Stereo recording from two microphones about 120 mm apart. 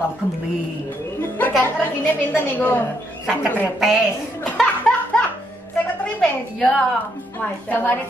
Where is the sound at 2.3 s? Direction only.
15° left (ahead or behind).